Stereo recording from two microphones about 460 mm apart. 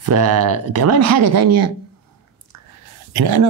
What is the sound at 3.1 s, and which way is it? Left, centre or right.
Speech, right.